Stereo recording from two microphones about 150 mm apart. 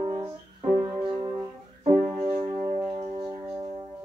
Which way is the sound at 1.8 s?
40° right (ahead or behind).